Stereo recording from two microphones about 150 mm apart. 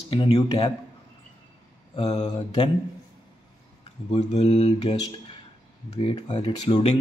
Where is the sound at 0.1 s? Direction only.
30° left (ahead or behind).